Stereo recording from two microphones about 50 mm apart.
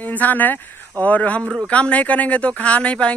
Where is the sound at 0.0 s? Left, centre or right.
Left.